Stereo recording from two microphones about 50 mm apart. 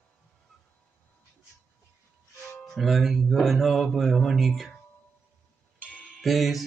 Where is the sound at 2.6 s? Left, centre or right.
Centre.